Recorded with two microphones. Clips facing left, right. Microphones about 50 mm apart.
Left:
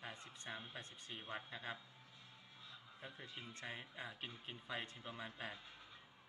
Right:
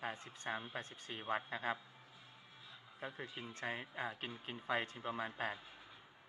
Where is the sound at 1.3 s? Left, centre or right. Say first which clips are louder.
Right 9 dB; right.